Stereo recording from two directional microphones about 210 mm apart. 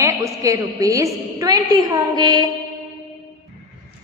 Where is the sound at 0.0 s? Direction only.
15° right (ahead or behind).